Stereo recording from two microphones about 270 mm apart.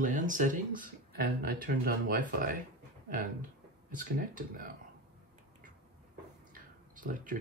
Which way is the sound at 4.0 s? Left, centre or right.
Right.